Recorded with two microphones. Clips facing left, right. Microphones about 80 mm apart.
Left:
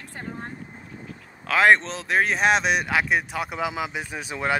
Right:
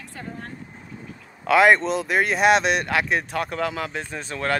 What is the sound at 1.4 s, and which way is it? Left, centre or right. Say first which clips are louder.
Speech: right 2 dB; centre.